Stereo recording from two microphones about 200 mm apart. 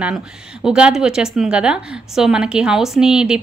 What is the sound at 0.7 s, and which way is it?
A woman's voice, 5° right (ahead or behind).